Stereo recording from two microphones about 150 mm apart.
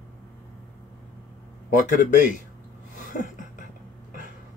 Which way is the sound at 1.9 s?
60° left (ahead or behind).